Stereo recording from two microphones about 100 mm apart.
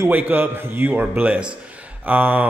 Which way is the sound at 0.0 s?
20° right (ahead or behind).